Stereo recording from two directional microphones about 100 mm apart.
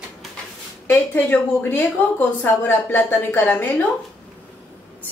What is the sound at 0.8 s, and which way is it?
A woman's voice, 20° left (ahead or behind).